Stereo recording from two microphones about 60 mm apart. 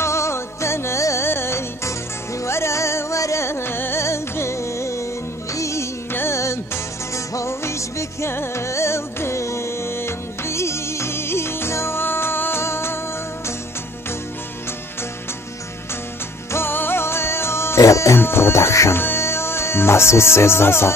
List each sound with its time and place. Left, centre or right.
0.0 s music: left
6.1 s music: left
16.5 s music: left
17.8 s music: left
18.1 s speech: left